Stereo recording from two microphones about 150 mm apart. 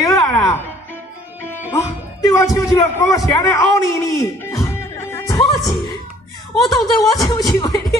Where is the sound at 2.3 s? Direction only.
20° left (ahead or behind).